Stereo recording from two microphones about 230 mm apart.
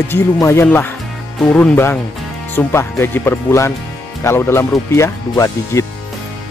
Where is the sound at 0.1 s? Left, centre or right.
Centre.